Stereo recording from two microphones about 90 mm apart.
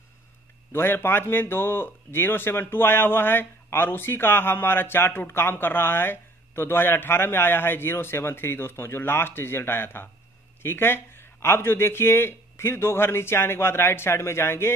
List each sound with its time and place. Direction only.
0.7 s speech: 25° left (ahead or behind)